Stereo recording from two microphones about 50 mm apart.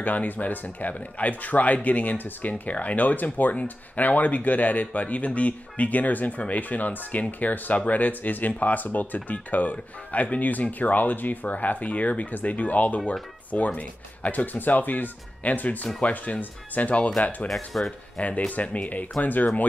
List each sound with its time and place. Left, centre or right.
0.0 s speech: left